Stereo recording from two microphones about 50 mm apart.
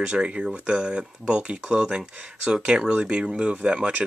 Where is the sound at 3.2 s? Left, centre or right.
Centre.